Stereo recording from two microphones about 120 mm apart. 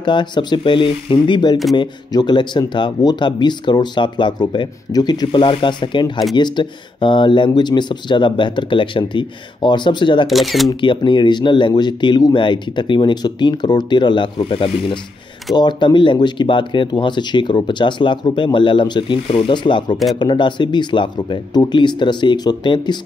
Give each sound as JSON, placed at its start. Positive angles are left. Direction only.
{"t": 0.0, "sound": "speech", "side_deg": 40}
{"t": 10.2, "sound": "speech", "side_deg": 0}
{"t": 10.8, "sound": "speech", "side_deg": 40}